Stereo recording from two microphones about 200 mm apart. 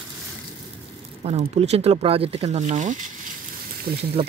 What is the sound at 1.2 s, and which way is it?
Speech, 30° right (ahead or behind).